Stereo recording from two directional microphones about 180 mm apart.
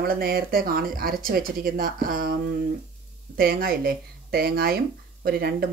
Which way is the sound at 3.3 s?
55° right (ahead or behind).